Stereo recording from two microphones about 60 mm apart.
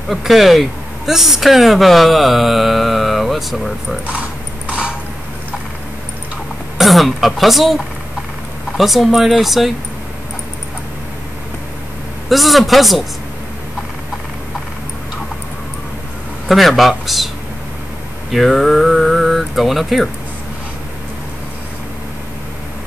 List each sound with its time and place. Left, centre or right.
0.1 s speech: centre
4.6 s a sound: centre
6.8 s speech: centre
12.3 s speech: centre
16.4 s speech: centre
18.3 s speech: centre